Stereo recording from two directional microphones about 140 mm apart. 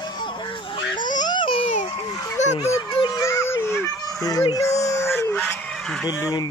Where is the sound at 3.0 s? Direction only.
25° left (ahead or behind).